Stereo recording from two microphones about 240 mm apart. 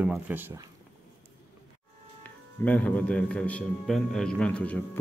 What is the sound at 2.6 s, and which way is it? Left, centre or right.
A man's voice, centre.